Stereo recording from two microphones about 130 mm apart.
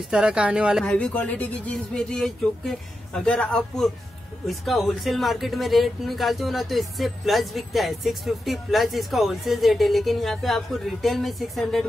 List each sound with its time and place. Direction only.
0.1 s speech: 5° right (ahead or behind)
0.8 s speech: 10° left (ahead or behind)